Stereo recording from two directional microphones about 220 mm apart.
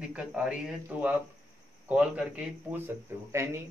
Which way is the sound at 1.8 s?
5° right (ahead or behind).